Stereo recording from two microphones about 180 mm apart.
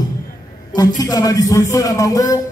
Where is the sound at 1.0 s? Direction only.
20° left (ahead or behind).